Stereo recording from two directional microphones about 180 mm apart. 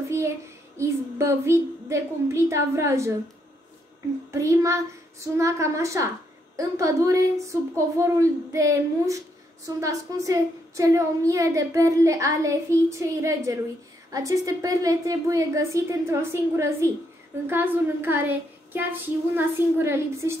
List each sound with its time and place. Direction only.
0.7 s a woman's voice: 15° right (ahead or behind)
4.3 s a woman's voice: 15° right (ahead or behind)